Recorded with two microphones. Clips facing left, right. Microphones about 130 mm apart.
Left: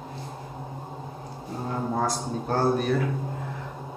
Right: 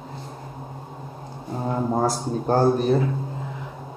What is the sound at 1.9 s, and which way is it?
A man's voice, 35° right (ahead or behind).